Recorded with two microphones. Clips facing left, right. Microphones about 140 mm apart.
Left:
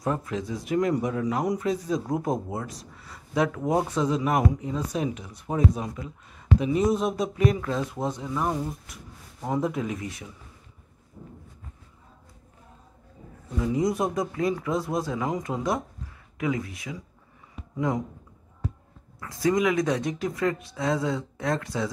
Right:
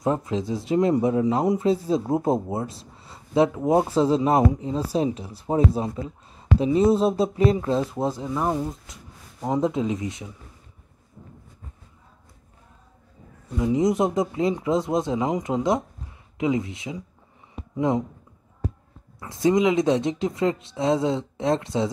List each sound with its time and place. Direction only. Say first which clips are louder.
0.0 s speech: right 4 dB; 25° right (ahead or behind)
13.6 s speech: right 4 dB; 20° right (ahead or behind)
17.6 s a sound: right 4 dB; 25° right (ahead or behind)
19.1 s speech: right 4 dB; 25° right (ahead or behind)